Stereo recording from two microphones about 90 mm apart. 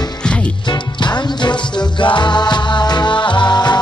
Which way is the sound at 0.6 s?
55° left (ahead or behind).